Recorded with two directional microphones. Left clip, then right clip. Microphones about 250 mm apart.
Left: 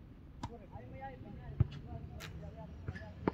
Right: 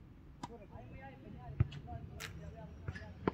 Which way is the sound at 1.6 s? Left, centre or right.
Right.